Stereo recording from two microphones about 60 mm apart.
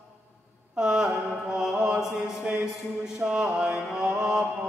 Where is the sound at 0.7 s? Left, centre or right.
Centre.